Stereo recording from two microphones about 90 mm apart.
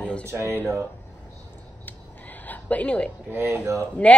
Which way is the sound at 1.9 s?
20° left (ahead or behind).